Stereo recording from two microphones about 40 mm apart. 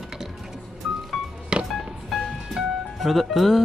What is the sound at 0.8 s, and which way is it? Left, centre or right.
Music, centre.